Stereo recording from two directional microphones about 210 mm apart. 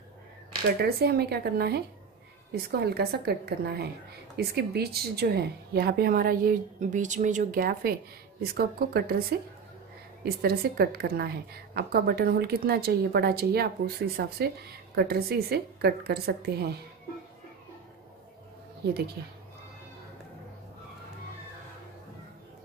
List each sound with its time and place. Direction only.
0.7 s a woman's voice: 50° right (ahead or behind)
10.2 s a woman's voice: 50° right (ahead or behind)